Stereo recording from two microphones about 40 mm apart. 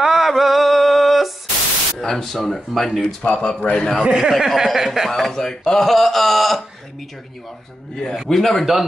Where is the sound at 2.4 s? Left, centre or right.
Centre.